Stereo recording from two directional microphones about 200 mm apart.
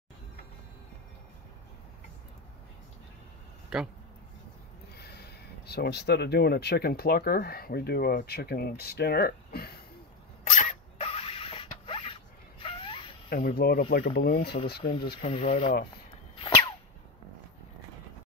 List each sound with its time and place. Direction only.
3.7 s speech: 5° right (ahead or behind)
4.9 s speech: 55° left (ahead or behind)
10.4 s creak: 35° left (ahead or behind)
12.6 s a sound: 25° left (ahead or behind)
13.3 s speech: 45° left (ahead or behind)
15.2 s speech: 30° left (ahead or behind)